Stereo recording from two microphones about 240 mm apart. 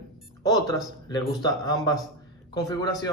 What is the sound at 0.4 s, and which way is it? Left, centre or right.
Speech, centre.